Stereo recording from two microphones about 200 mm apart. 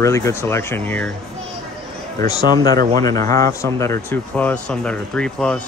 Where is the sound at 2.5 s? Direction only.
20° left (ahead or behind).